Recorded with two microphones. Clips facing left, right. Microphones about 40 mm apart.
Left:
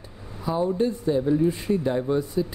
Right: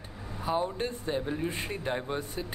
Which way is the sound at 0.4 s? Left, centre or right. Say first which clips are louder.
Left 4 dB; right.